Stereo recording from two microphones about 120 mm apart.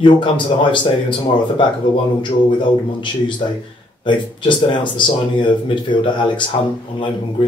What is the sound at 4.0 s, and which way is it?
Speech, 40° left (ahead or behind).